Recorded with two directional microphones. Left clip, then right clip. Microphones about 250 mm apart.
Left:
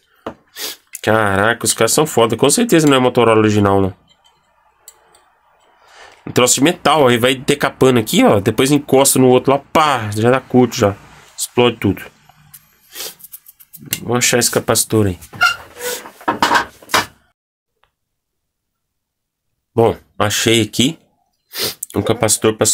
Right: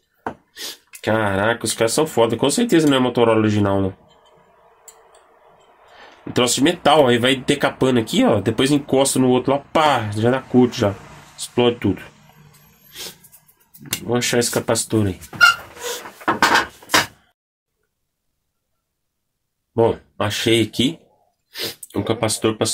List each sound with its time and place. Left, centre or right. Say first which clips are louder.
0.5 s speech: left 5 dB; left
5.9 s speech: left 5 dB; left
14.0 s speech: left 4 dB; left
19.7 s speech: left 3 dB; left